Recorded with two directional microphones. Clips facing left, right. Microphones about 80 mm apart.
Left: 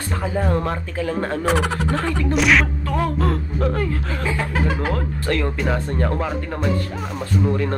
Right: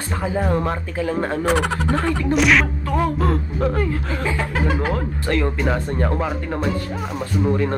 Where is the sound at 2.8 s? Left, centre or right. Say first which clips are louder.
Right 1 dB; right.